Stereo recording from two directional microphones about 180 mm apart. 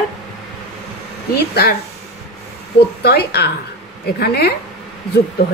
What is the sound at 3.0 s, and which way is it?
A woman's voice, 60° left (ahead or behind).